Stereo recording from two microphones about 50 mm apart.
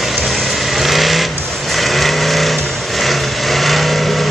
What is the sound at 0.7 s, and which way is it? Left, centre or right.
Vehicle, centre.